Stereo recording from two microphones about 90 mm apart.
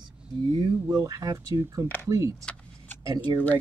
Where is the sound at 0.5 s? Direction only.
65° right (ahead or behind).